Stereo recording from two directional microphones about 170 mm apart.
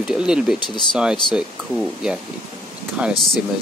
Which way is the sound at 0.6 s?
25° left (ahead or behind).